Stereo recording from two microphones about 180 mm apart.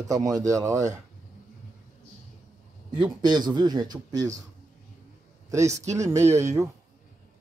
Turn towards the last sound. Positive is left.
turn(degrees=-15)  # may be behind; listen again after turning